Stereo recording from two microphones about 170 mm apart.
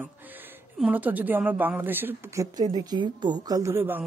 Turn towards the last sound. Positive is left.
turn(degrees=-10)  # may be behind; listen again after turning